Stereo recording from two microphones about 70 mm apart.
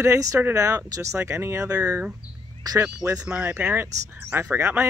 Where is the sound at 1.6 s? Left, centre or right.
Right.